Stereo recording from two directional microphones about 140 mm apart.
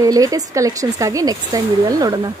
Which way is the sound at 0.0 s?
25° right (ahead or behind).